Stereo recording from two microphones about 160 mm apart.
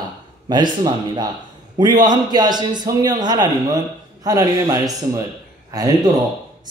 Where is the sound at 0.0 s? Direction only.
25° right (ahead or behind).